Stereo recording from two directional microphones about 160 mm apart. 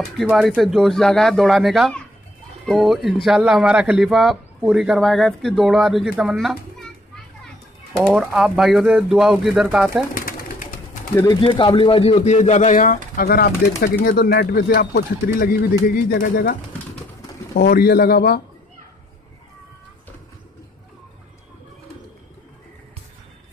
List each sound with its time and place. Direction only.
0.2 s a man's voice: centre (ahead or behind)
7.9 s a man's voice: 5° right (ahead or behind)
10.1 s bird: 60° left (ahead or behind)
11.3 s speech: 30° left (ahead or behind); by 15.5 s 80° left
16.1 s speech: 65° left (ahead or behind)
17.6 s speech: 75° left (ahead or behind)